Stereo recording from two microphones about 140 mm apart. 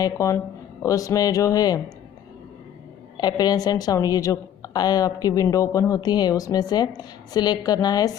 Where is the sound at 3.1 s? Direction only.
30° left (ahead or behind).